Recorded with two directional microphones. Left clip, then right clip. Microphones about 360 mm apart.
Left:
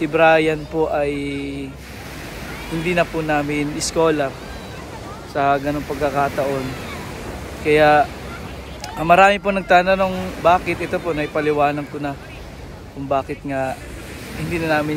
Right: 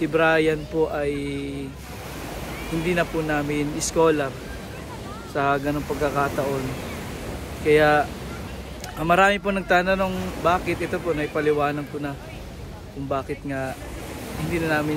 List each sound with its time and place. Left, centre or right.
0.0 s speech: centre
2.9 s speech: centre
5.3 s speech: centre
7.6 s speech: centre